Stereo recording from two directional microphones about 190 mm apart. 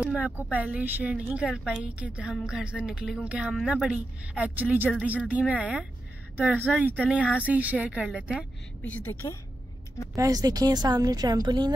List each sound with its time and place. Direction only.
0.0 s speech: 5° right (ahead or behind)
9.0 s a woman's voice: 10° left (ahead or behind)
10.1 s a woman's voice: 20° right (ahead or behind)